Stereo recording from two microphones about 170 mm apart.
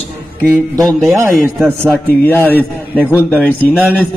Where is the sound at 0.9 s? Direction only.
15° right (ahead or behind).